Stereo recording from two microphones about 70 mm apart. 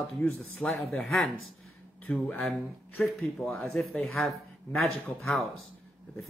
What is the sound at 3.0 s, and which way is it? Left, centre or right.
Speech, centre.